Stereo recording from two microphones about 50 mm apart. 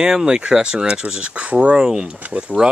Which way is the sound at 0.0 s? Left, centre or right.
Centre.